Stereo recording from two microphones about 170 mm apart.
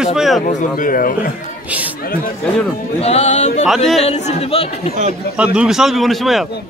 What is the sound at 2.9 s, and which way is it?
Speech, 40° left (ahead or behind).